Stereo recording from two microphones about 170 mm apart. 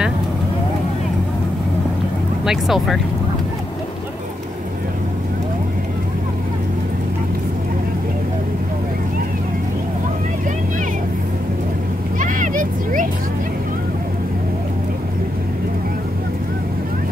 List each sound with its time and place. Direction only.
2.4 s speech: centre (ahead or behind)
12.2 s vehicle: 50° right (ahead or behind)